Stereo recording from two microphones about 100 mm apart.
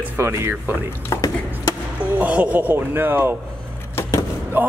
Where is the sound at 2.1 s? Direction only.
15° right (ahead or behind).